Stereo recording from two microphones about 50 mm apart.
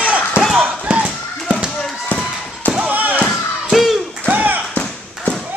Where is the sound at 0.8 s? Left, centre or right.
Right.